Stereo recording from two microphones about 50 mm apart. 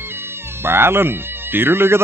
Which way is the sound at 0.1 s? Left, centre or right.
Right.